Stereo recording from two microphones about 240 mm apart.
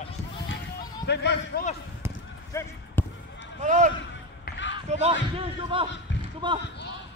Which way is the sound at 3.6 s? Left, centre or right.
Right.